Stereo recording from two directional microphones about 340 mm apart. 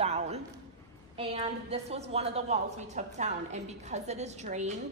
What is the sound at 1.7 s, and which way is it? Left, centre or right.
A woman's voice, centre.